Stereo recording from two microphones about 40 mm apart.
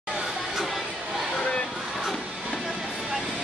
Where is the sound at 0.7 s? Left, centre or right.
Centre.